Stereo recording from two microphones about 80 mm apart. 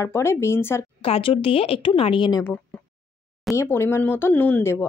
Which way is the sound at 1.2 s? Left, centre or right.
Left.